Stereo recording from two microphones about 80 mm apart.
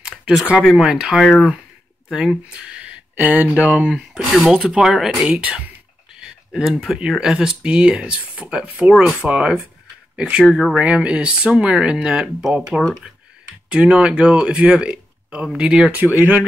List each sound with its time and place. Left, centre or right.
0.0 s speech: centre
3.9 s speech: centre
6.1 s a sound: centre
7.0 s speech: centre